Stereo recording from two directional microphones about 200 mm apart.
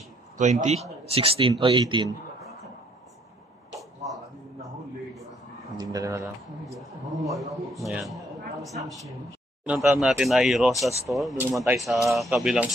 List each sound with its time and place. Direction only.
0.4 s a man's voice: 35° right (ahead or behind)
5.8 s a sound: 20° right (ahead or behind)
7.2 s a man's voice: centre (ahead or behind)